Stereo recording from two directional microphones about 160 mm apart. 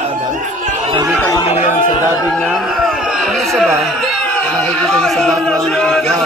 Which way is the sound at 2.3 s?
Centre (ahead or behind).